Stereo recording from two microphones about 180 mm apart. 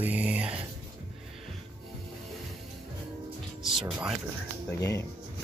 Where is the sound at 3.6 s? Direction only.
Centre (ahead or behind).